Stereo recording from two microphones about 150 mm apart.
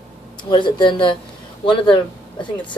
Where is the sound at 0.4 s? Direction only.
30° left (ahead or behind).